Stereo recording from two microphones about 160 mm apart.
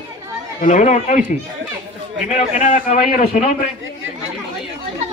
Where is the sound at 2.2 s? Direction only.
50° left (ahead or behind).